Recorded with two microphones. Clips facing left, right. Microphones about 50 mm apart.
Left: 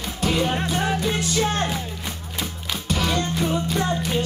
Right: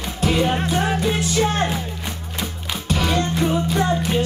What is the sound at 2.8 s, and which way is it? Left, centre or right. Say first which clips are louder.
Music: right 3 dB; centre.